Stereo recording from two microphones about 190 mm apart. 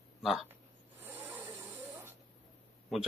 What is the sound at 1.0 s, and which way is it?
Rub, 10° right (ahead or behind).